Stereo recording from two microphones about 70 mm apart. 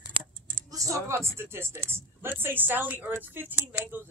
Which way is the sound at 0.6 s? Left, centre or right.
Right.